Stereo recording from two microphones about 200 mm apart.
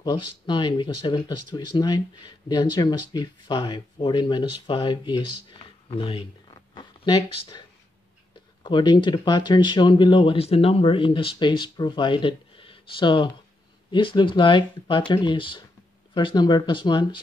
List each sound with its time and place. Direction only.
0.0 s speech: 20° left (ahead or behind)
8.6 s speech: 20° left (ahead or behind)